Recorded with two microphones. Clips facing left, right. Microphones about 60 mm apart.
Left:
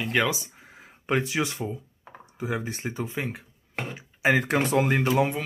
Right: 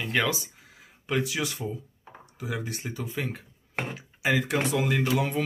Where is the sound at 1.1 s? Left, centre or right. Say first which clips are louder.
Left 3 dB; left.